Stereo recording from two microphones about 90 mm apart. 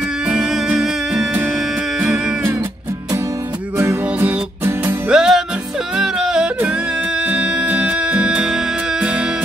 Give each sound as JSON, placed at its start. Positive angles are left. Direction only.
{"t": 0.3, "sound": "music", "side_deg": -10}
{"t": 3.7, "sound": "music", "side_deg": -30}
{"t": 5.1, "sound": "music", "side_deg": -5}
{"t": 5.9, "sound": "yodeling", "side_deg": -5}
{"t": 7.2, "sound": "music", "side_deg": -15}